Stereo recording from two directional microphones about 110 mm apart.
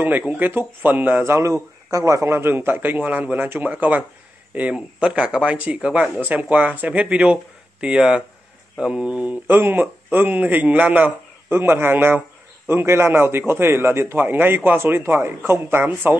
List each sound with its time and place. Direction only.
0.3 s a man's voice: 15° right (ahead or behind)